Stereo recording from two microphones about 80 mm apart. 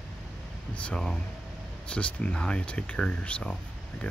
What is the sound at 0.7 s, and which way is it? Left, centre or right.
Speech, centre.